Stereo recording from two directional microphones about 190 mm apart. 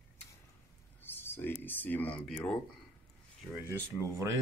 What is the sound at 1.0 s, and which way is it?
Speech, 10° left (ahead or behind).